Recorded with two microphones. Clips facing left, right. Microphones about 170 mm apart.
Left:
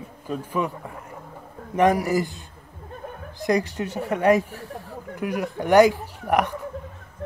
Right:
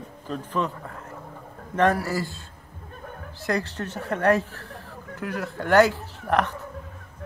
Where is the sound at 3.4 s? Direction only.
15° left (ahead or behind).